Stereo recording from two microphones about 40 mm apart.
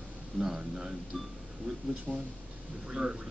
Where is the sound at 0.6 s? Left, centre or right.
Centre.